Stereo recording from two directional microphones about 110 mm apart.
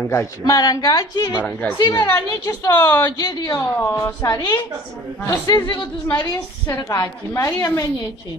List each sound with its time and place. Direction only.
0.1 s a woman's voice: 30° left (ahead or behind)